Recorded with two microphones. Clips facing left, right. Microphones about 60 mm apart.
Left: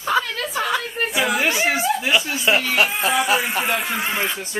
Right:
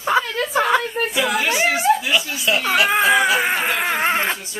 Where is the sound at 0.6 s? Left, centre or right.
Right.